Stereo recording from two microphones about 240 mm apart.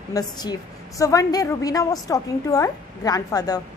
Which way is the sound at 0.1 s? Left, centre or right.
Centre.